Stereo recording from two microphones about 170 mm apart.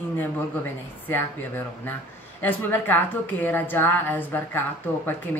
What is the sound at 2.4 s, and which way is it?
A woman's voice, 10° left (ahead or behind).